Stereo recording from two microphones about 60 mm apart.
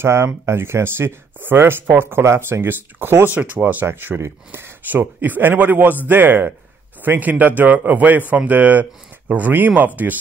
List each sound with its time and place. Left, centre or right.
0.0 s speech: right
2.2 s speech: right
4.8 s speech: right